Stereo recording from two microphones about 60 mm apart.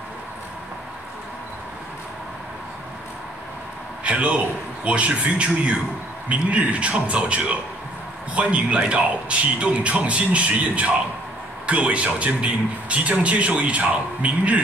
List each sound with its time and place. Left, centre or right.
4.0 s a man's voice: right